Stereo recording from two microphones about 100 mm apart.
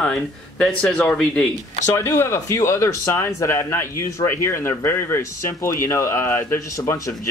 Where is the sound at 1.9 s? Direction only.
25° left (ahead or behind).